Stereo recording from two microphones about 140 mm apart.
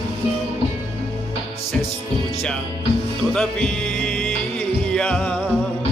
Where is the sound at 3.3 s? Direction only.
5° left (ahead or behind).